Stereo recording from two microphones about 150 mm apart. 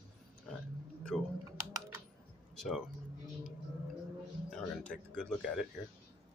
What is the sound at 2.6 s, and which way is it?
Speech, centre (ahead or behind).